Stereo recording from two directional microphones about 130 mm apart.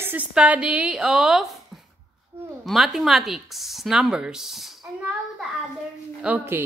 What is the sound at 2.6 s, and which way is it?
Speech, centre (ahead or behind).